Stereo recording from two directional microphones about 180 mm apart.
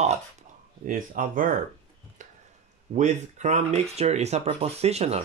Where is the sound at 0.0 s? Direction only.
45° right (ahead or behind).